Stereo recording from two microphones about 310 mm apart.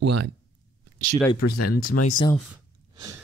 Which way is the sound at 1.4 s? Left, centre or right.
Left.